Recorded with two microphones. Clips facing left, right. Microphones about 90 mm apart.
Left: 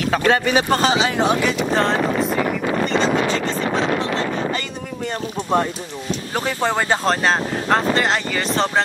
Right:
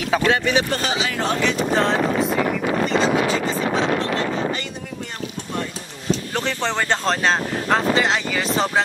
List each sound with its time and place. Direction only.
0.2 s speech: 45° left (ahead or behind)
1.2 s speech: 15° left (ahead or behind)
1.7 s speech: centre (ahead or behind)
6.3 s speech: 10° left (ahead or behind)